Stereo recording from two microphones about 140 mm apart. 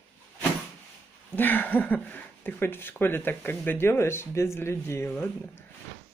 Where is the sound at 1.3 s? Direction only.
15° left (ahead or behind).